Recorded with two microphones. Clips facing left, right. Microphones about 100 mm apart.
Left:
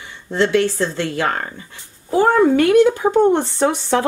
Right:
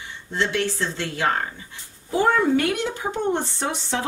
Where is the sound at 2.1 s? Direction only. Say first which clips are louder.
Left 6 dB; 40° left (ahead or behind).